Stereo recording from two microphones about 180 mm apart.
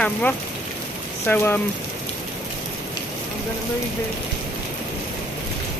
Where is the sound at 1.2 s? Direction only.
10° left (ahead or behind).